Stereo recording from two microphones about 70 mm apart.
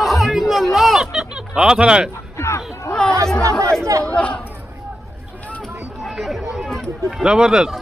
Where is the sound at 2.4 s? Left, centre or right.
Left.